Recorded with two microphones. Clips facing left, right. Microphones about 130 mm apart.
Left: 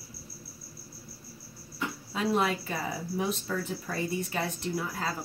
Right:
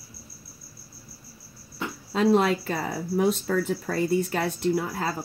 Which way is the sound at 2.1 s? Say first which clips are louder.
Right 7 dB; 70° right (ahead or behind).